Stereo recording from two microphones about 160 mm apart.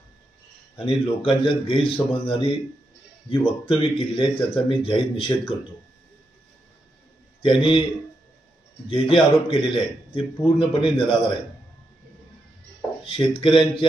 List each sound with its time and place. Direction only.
0.7 s speech: 30° left (ahead or behind)
7.4 s speech: 30° left (ahead or behind)
8.8 s speech: 35° left (ahead or behind)
13.0 s speech: 35° left (ahead or behind)